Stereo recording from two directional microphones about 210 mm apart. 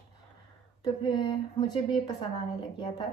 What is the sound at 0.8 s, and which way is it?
A woman's voice, 20° left (ahead or behind).